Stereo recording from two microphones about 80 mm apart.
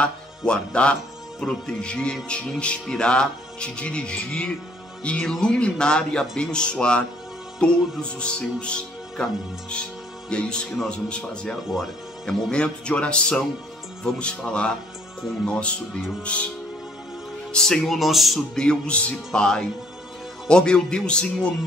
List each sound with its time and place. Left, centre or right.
0.0 s speech: centre
10.3 s speech: centre
17.5 s speech: centre